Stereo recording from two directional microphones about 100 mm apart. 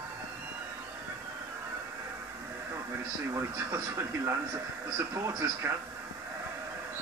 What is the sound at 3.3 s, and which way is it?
A man's voice, 30° right (ahead or behind).